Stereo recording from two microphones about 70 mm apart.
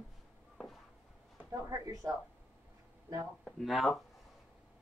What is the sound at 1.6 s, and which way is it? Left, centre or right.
Speech, right.